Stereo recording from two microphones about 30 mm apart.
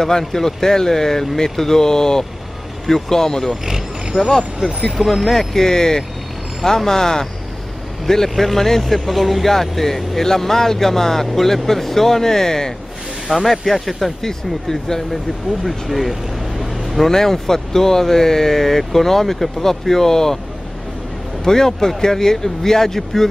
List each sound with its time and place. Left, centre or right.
0.3 s speech: centre
4.4 s speech: centre
4.9 s speech: centre
5.3 s speech: centre
9.5 s speech: centre
13.5 s speech: centre
14.2 s speech: centre
15.6 s speech: centre
17.0 s speech: centre
21.5 s speech: centre